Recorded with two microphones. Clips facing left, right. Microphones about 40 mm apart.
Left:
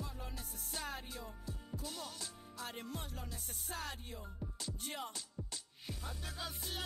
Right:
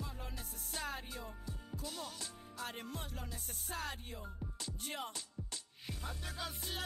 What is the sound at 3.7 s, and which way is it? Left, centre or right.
Music, centre.